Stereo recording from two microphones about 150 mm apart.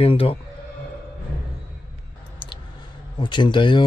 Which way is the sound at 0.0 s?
40° left (ahead or behind).